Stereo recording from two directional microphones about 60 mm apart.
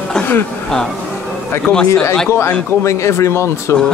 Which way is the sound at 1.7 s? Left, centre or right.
Left.